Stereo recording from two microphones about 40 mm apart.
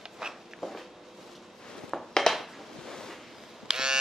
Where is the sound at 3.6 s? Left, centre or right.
Centre.